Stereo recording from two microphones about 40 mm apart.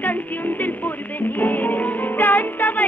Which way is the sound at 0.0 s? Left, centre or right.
Left.